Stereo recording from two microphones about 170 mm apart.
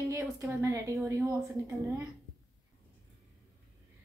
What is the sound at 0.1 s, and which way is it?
Speech, 15° right (ahead or behind).